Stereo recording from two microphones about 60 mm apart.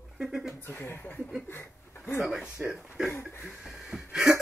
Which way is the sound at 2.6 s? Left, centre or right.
Right.